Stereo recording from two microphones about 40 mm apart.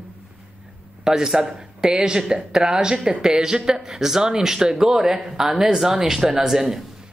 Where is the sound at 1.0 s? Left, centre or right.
Centre.